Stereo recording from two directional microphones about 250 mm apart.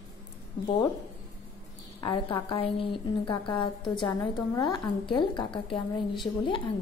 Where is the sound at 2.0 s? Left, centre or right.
Centre.